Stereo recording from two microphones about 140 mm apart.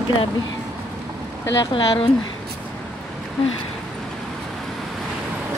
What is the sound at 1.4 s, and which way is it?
Speech, 20° left (ahead or behind).